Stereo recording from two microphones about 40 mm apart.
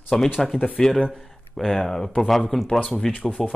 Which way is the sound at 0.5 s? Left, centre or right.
Left.